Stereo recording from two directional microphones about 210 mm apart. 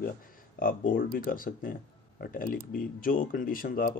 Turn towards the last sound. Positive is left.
turn(degrees=40)  # may be behind; listen again after turning